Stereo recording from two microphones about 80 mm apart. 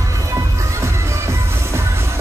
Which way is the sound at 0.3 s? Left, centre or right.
Right.